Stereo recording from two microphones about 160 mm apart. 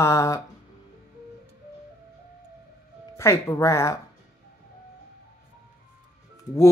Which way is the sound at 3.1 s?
20° left (ahead or behind).